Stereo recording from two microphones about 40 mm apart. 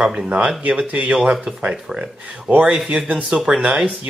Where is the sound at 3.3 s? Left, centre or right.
Centre.